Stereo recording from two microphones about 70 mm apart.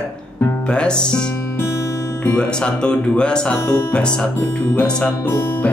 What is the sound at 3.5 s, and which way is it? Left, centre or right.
Speech, left.